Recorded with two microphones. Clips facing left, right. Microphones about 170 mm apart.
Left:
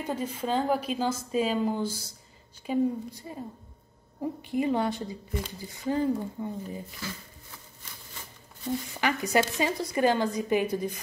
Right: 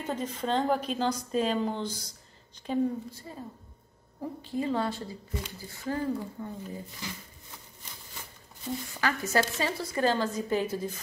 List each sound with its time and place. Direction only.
0.0 s speech: 10° left (ahead or behind)
7.0 s speech: 15° right (ahead or behind)
9.0 s speech: 15° left (ahead or behind)